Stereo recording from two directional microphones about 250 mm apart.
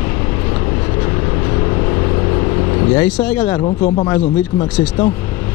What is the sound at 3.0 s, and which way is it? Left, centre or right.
Speech, centre.